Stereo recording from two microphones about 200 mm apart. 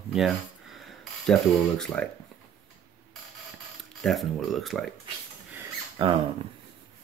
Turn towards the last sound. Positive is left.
turn(degrees=-25)  # may be behind; listen again after turning